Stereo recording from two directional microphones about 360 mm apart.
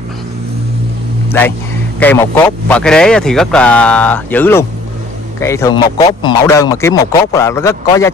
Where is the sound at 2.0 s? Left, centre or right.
Centre.